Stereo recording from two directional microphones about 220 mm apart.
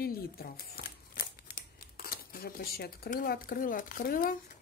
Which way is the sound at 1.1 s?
40° left (ahead or behind).